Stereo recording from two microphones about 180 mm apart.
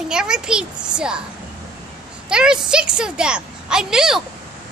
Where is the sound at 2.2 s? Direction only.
5° right (ahead or behind).